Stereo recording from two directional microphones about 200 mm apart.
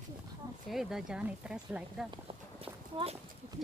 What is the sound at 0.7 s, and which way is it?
Speech, centre (ahead or behind).